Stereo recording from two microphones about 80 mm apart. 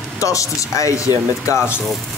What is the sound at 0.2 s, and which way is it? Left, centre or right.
Speech, left.